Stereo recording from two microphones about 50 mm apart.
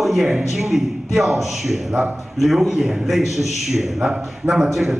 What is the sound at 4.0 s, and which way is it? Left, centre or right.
Speech, centre.